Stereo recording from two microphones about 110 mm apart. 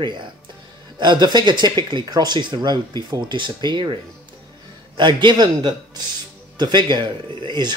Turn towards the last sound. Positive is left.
turn(degrees=-45)  # may be behind; listen again after turning